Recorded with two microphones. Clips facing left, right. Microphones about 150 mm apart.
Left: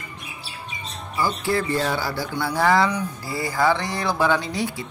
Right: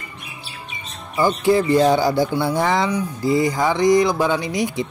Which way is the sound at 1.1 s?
20° right (ahead or behind).